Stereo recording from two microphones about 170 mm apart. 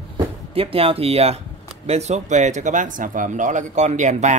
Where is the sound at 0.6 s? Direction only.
35° right (ahead or behind).